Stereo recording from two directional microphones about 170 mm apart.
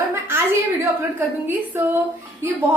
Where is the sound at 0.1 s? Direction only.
15° right (ahead or behind).